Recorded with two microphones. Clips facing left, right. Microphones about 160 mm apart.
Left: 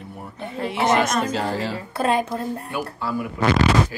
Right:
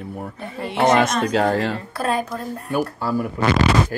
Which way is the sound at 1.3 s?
60° right (ahead or behind).